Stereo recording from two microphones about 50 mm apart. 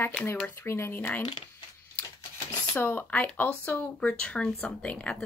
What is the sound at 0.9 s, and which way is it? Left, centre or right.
Speech, left.